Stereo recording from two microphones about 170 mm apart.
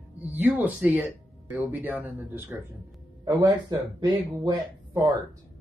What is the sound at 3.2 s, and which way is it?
Speech, 20° right (ahead or behind).